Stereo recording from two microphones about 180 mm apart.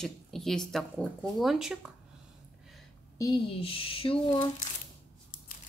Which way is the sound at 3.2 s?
25° left (ahead or behind).